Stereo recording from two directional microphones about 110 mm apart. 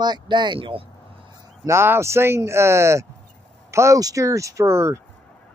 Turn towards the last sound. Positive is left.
turn(degrees=-25)  # may be behind; listen again after turning